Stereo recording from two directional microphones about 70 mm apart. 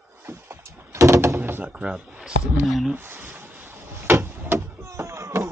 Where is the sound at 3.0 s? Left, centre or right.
Right.